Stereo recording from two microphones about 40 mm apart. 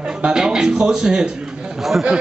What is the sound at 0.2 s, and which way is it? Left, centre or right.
Speech, centre.